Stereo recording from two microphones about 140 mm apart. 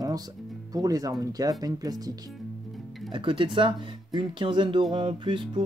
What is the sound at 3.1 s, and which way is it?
Speech, 35° right (ahead or behind).